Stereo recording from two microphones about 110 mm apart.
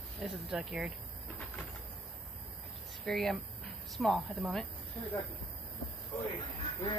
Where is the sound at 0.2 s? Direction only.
5° right (ahead or behind).